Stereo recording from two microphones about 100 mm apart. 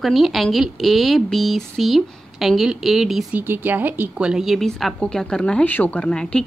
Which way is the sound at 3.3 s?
20° right (ahead or behind).